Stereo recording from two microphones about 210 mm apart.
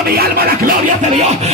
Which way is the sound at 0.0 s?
45° right (ahead or behind).